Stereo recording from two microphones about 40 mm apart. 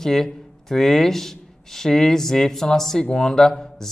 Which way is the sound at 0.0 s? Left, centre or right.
Centre.